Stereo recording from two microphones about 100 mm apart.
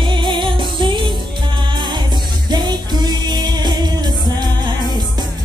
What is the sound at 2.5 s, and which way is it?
Music, 45° right (ahead or behind).